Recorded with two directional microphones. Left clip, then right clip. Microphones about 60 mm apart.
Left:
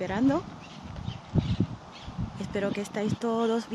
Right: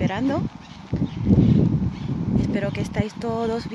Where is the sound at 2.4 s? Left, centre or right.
Left.